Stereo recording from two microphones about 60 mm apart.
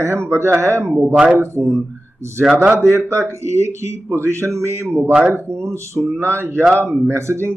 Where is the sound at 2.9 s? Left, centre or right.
Right.